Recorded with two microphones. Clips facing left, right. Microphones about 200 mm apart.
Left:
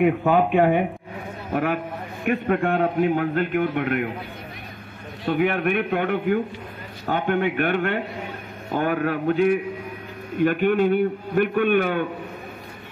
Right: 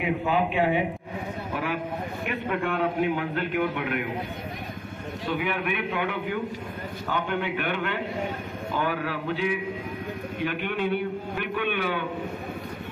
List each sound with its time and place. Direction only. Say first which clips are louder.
0.0 s a man's voice: left 7 dB; 50° left (ahead or behind)
5.2 s a man's voice: left 7 dB; 50° left (ahead or behind)